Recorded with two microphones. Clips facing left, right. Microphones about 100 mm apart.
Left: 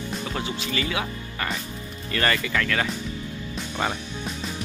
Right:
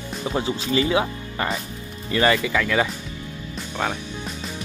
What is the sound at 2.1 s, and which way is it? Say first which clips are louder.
Speech: right 5 dB; 15° right (ahead or behind).